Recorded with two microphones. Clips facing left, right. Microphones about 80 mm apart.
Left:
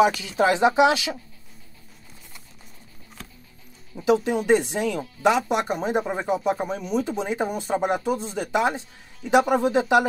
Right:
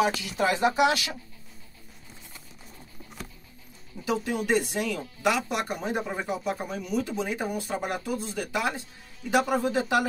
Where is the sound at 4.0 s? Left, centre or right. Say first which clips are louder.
Left 7 dB; left.